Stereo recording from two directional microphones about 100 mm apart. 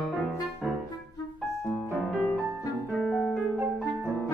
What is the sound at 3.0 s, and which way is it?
Piano, 5° left (ahead or behind).